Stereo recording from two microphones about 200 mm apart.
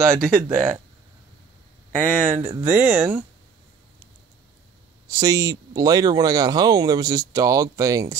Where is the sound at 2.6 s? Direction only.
10° right (ahead or behind).